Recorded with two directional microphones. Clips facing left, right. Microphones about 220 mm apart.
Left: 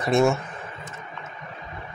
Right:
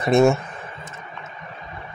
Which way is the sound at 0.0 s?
20° right (ahead or behind).